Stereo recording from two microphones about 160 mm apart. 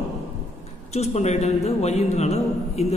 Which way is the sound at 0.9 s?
45° left (ahead or behind).